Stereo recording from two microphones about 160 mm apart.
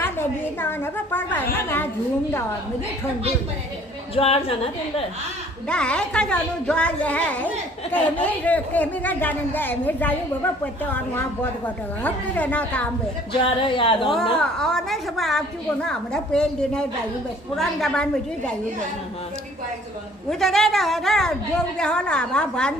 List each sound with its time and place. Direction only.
0.0 s speech: 15° left (ahead or behind)
4.1 s a woman's voice: 40° left (ahead or behind)
5.7 s speech: 5° left (ahead or behind)
13.3 s a woman's voice: 30° left (ahead or behind)
14.4 s a woman's voice: 5° left (ahead or behind)
20.2 s a woman's voice: centre (ahead or behind)